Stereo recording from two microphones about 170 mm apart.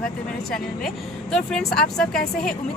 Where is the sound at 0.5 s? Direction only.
5° left (ahead or behind).